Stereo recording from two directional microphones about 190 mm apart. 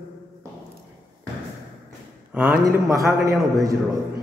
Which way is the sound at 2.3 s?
10° right (ahead or behind).